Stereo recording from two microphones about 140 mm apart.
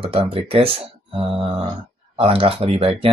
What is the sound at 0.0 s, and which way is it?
Speech, 40° right (ahead or behind).